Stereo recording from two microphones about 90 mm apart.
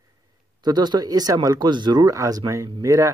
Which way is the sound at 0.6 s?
50° right (ahead or behind).